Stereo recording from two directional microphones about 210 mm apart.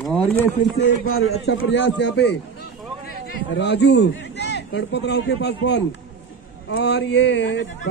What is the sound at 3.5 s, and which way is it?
A man's voice, 55° left (ahead or behind).